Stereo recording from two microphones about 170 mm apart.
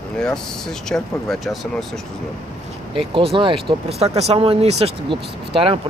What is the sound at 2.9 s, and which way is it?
Speech, 30° right (ahead or behind).